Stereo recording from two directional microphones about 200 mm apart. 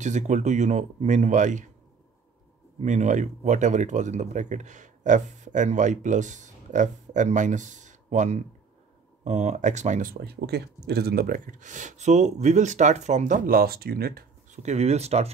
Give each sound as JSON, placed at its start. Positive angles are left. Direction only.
{"t": 0.0, "sound": "speech", "side_deg": -35}
{"t": 2.8, "sound": "speech", "side_deg": -35}
{"t": 10.2, "sound": "speech", "side_deg": -55}
{"t": 14.6, "sound": "speech", "side_deg": -35}